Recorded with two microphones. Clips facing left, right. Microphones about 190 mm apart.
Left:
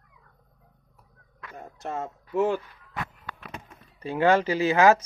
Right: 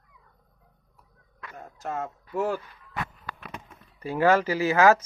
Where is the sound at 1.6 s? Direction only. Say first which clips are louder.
Even; 20° left (ahead or behind).